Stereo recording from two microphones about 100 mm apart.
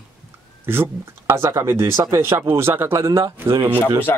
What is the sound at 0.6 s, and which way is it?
Speech, 25° right (ahead or behind).